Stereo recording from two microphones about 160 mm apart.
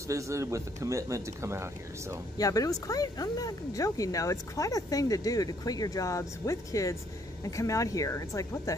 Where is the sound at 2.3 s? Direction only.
20° left (ahead or behind).